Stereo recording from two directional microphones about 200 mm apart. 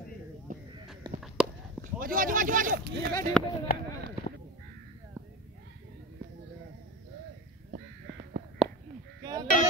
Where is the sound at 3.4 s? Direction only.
5° left (ahead or behind).